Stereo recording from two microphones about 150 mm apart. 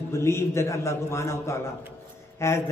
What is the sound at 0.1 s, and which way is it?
A man's voice, 20° left (ahead or behind).